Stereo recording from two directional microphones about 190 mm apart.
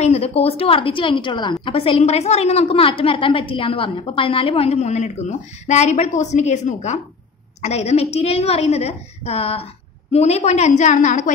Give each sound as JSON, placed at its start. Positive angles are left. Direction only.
{"t": 0.0, "sound": "a woman's voice", "side_deg": 35}